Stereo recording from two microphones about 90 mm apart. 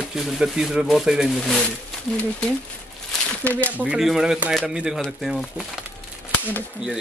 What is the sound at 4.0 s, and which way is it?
Speech, 5° right (ahead or behind).